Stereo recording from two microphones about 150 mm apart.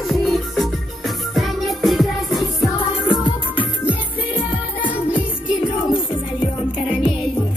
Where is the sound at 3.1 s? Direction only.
35° left (ahead or behind).